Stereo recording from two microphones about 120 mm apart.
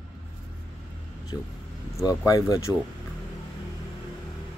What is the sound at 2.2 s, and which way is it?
Speech, 25° left (ahead or behind).